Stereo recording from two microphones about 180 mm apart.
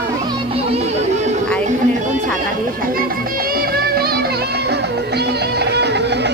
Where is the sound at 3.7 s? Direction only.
55° right (ahead or behind).